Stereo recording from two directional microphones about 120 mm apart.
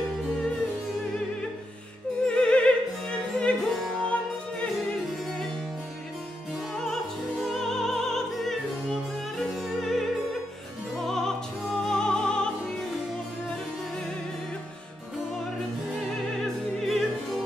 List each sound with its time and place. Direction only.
2.2 s music: 10° left (ahead or behind)
7.5 s opera: 5° left (ahead or behind)
9.6 s music: centre (ahead or behind)
16.8 s opera: centre (ahead or behind)